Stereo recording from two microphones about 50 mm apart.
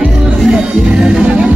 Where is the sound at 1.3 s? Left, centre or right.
Right.